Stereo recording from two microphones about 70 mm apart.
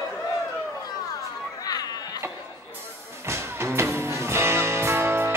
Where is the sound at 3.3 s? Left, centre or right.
Right.